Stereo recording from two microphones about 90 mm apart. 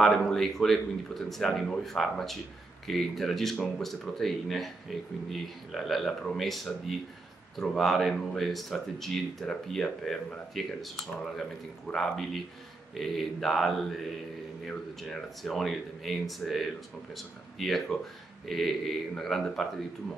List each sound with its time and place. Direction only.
0.0 s speech: 5° left (ahead or behind)
11.9 s speech: 5° left (ahead or behind)